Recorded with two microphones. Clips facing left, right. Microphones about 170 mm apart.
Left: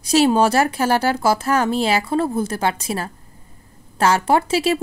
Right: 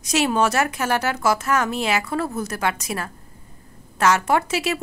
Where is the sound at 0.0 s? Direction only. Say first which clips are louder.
Left 5 dB; 30° left (ahead or behind).